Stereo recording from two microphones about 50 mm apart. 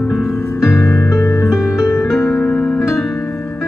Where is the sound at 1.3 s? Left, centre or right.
Left.